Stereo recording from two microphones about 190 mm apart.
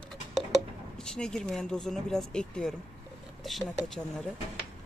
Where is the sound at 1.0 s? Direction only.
5° left (ahead or behind).